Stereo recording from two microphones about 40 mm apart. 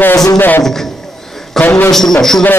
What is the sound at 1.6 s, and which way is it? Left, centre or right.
Speech, centre.